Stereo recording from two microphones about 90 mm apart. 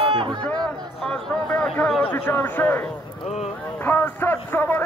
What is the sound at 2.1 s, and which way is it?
A man's voice, 25° left (ahead or behind).